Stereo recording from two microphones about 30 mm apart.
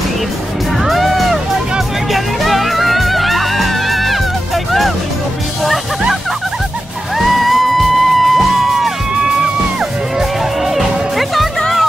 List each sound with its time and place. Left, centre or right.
0.8 s music: centre
7.2 s music: centre
10.7 s music: centre